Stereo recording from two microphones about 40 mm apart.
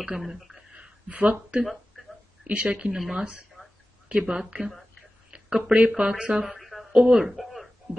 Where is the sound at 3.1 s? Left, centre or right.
Centre.